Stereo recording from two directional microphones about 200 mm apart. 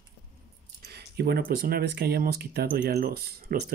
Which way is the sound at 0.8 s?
55° right (ahead or behind).